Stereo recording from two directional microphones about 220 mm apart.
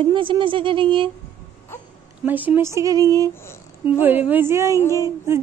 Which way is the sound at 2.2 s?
10° right (ahead or behind).